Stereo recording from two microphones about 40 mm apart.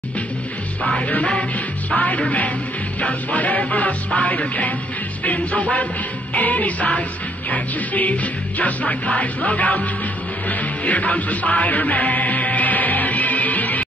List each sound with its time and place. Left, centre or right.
1.0 s music: left